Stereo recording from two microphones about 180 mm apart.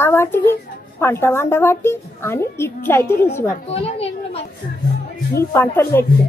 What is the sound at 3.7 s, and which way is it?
Speech, 35° left (ahead or behind).